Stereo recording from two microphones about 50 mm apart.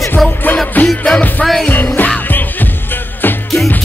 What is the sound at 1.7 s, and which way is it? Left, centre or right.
Music, left.